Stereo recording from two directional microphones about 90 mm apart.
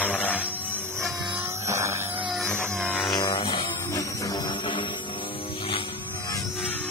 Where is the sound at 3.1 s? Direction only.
55° left (ahead or behind).